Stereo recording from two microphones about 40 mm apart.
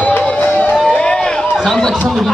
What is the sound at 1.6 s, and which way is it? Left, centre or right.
Speech, centre.